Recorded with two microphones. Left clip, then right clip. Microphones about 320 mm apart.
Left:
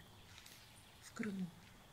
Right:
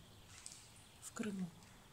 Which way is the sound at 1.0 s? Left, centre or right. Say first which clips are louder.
Even; centre.